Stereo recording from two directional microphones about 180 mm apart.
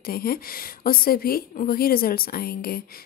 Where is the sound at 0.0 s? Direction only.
55° left (ahead or behind).